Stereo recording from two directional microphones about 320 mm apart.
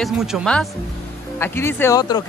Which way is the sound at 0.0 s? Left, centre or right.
Centre.